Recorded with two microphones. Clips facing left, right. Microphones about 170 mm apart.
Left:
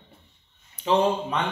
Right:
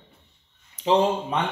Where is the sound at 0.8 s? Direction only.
20° right (ahead or behind).